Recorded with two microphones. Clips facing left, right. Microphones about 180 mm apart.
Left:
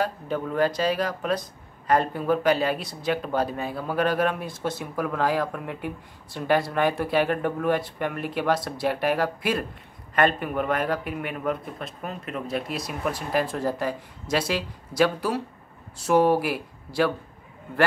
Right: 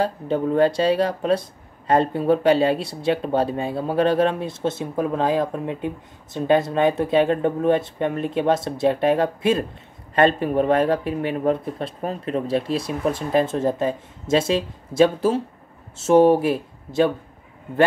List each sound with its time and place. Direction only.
0.0 s speech: 25° right (ahead or behind)